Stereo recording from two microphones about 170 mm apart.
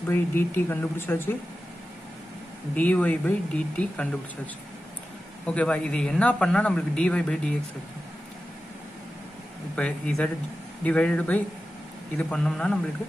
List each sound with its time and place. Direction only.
0.1 s speech: 10° left (ahead or behind)
2.7 s speech: 10° left (ahead or behind)
5.5 s speech: 5° left (ahead or behind)
9.8 s speech: 5° left (ahead or behind)